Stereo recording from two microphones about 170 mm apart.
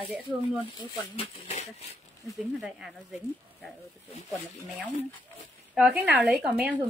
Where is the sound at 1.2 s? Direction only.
40° left (ahead or behind).